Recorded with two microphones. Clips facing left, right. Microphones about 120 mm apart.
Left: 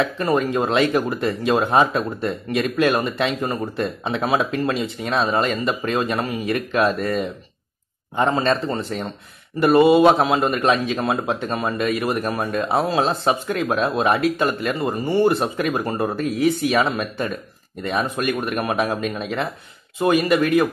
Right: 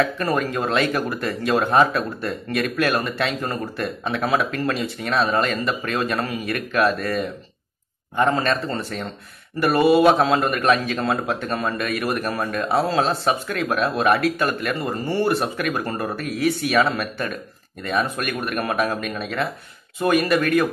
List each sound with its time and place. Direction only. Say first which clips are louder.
0.0 s speech: left 1 dB; 20° left (ahead or behind)